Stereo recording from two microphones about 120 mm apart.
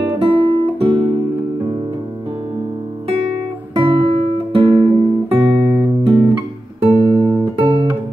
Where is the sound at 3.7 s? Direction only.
45° right (ahead or behind).